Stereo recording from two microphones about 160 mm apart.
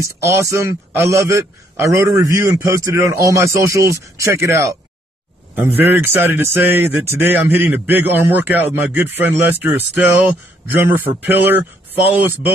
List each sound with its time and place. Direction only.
0.0 s a man's voice: 20° right (ahead or behind)